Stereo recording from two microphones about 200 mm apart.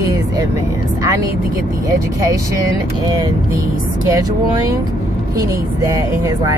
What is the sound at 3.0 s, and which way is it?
Speech, 20° right (ahead or behind).